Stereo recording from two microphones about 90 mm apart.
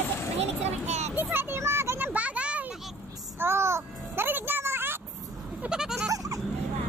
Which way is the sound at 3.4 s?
30° right (ahead or behind).